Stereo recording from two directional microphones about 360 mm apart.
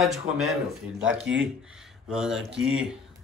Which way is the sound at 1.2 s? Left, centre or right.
Right.